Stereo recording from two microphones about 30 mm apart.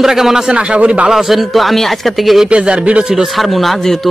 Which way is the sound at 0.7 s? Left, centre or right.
Right.